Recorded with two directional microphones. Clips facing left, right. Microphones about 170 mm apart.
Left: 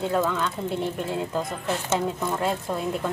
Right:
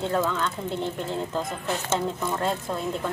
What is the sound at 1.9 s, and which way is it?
A woman's voice, 5° left (ahead or behind).